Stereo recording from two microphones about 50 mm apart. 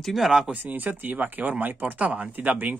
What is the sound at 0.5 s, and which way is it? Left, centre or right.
Speech, right.